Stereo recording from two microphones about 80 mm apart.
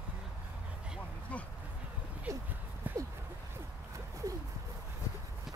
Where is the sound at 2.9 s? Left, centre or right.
Right.